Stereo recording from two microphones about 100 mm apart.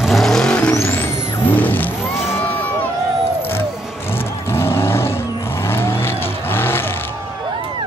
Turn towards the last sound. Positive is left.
turn(degrees=20)  # may be behind; listen again after turning